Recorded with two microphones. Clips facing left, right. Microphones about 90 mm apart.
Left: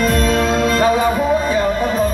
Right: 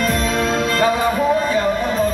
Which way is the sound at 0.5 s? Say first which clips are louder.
Left 2 dB; 15° left (ahead or behind).